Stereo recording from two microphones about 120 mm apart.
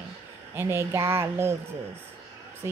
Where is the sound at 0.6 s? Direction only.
20° right (ahead or behind).